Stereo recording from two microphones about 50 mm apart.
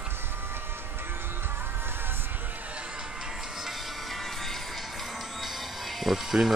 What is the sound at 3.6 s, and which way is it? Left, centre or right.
Music, centre.